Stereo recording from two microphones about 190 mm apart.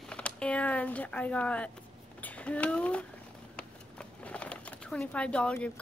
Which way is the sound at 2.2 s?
10° left (ahead or behind).